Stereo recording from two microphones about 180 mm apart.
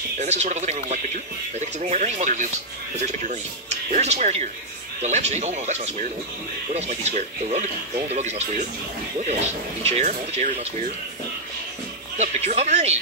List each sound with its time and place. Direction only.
0.2 s speech: 40° right (ahead or behind)
12.2 s speech: 40° right (ahead or behind)